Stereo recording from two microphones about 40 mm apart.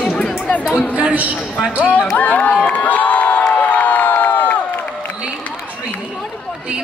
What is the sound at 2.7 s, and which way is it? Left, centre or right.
Crowd, left.